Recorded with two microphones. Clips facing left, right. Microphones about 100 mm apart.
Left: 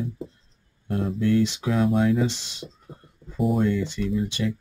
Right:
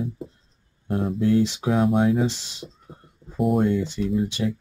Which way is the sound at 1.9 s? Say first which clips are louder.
Right 1 dB; 45° right (ahead or behind).